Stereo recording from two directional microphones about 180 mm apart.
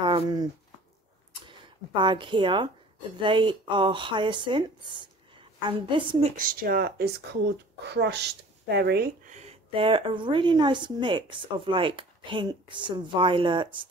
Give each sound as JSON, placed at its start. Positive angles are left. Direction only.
{"t": 0.0, "sound": "speech", "side_deg": -25}
{"t": 2.0, "sound": "a woman's voice", "side_deg": -25}
{"t": 6.3, "sound": "speech", "side_deg": -55}
{"t": 7.8, "sound": "speech", "side_deg": -70}
{"t": 9.3, "sound": "a woman's voice", "side_deg": -35}